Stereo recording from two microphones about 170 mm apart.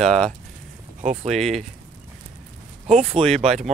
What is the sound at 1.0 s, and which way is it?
Speech, 45° right (ahead or behind).